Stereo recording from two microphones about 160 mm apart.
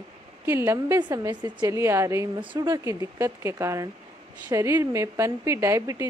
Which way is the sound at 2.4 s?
25° right (ahead or behind).